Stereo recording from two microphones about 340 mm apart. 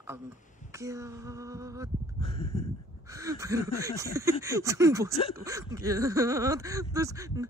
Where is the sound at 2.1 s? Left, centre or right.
Centre.